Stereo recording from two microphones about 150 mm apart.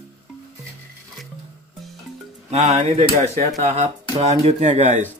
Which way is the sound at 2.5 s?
45° right (ahead or behind).